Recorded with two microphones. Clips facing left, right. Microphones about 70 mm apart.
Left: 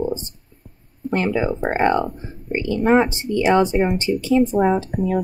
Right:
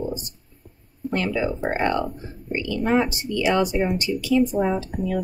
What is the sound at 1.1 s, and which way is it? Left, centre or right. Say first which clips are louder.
Speech: left 4 dB; left.